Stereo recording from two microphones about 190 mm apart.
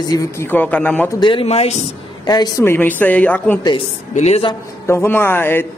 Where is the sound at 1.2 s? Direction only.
25° left (ahead or behind).